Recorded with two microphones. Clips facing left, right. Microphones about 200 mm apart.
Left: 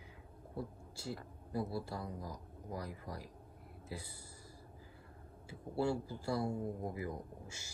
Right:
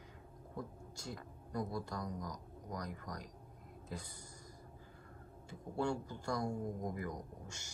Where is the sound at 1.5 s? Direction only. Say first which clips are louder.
Left 1 dB; 5° left (ahead or behind).